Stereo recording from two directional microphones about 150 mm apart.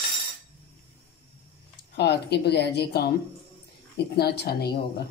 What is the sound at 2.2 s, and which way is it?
Speech, 90° left.